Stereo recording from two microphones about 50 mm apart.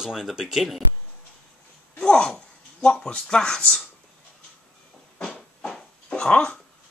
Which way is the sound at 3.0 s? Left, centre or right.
Centre.